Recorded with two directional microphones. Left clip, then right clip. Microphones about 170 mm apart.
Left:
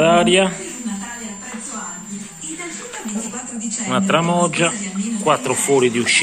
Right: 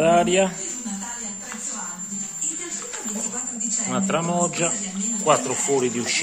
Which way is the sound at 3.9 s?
Centre (ahead or behind).